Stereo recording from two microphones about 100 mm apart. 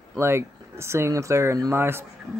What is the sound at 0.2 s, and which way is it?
Speech, 25° right (ahead or behind).